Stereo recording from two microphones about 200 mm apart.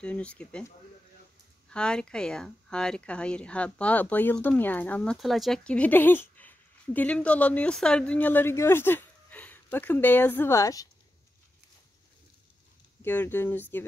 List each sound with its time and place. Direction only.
0.0 s speech: 5° left (ahead or behind)
13.0 s speech: 10° left (ahead or behind)